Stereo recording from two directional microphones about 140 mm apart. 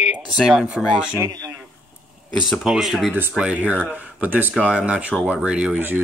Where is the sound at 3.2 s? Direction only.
10° right (ahead or behind).